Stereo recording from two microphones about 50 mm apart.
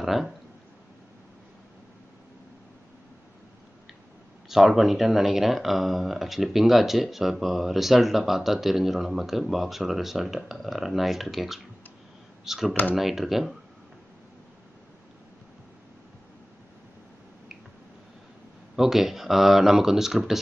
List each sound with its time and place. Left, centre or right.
0.0 s speech: centre
4.5 s speech: centre
18.8 s speech: centre